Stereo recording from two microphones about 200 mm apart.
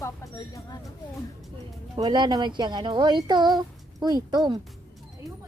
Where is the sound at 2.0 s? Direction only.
20° right (ahead or behind).